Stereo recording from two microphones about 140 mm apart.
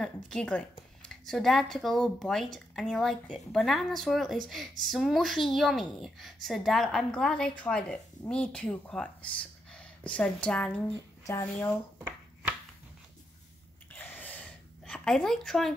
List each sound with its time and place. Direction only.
0.0 s speech: 5° left (ahead or behind)
11.2 s speech: 20° left (ahead or behind)
13.9 s a sound: 10° left (ahead or behind)